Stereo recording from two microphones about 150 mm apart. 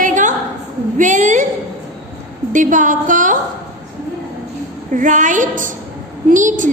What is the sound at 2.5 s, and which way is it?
Speech, 60° right (ahead or behind).